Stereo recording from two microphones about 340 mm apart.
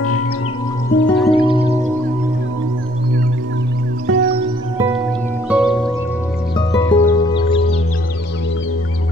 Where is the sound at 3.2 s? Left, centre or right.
Right.